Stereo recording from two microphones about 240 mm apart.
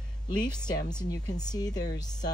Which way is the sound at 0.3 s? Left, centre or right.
Centre.